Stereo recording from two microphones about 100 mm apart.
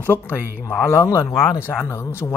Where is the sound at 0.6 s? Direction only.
25° left (ahead or behind); by 1.5 s 40° left (ahead or behind).